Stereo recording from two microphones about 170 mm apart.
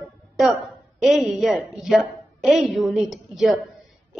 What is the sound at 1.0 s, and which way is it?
A woman's voice, centre (ahead or behind).